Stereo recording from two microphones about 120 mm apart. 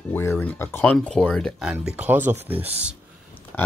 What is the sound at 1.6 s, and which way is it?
Speech, 5° right (ahead or behind).